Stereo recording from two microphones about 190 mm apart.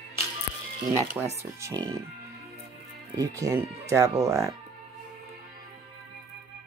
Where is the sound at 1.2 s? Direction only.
5° right (ahead or behind).